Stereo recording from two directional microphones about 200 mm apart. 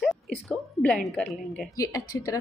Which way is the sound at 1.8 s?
15° left (ahead or behind).